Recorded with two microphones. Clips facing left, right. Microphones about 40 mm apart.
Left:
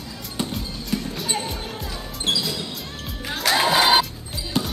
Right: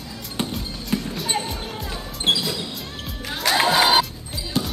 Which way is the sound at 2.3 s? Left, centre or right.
Right.